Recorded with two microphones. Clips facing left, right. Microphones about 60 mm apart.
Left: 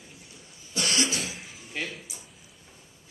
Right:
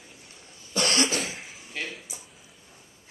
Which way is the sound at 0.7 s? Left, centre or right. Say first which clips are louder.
Right 3 dB; right.